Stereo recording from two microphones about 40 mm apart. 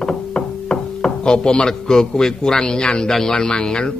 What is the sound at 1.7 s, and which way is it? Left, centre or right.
Speech, centre.